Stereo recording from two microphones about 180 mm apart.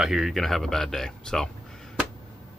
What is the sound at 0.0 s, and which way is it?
Speech, centre (ahead or behind).